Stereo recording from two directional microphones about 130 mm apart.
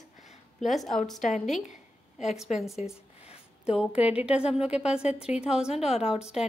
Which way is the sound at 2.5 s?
60° left (ahead or behind).